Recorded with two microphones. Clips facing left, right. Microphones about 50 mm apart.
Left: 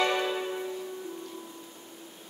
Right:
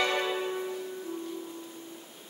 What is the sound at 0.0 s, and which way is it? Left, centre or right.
Music, centre.